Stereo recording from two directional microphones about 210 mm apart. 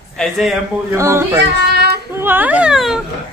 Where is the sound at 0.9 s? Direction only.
15° right (ahead or behind).